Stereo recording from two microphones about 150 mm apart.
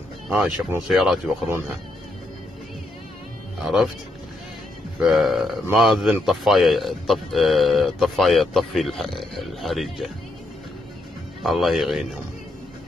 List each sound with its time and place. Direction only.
0.3 s speech: 10° right (ahead or behind)
3.5 s speech: centre (ahead or behind)
4.9 s speech: centre (ahead or behind)
11.4 s speech: centre (ahead or behind)